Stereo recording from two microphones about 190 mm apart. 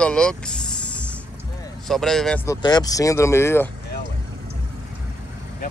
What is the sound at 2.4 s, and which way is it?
Speech, 20° left (ahead or behind).